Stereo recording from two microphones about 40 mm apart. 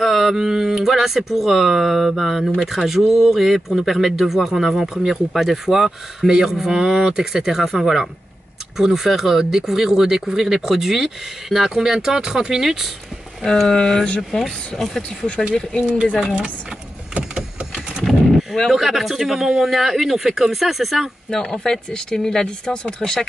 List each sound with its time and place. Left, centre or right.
0.0 s speech: centre
13.7 s speech: centre
15.0 s speech: left
15.5 s speech: centre
18.0 s a sound: centre
18.7 s speech: centre
21.3 s speech: centre